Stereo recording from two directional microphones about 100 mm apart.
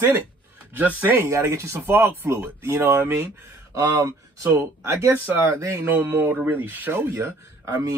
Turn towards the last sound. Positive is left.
turn(degrees=-25)  # may be behind; listen again after turning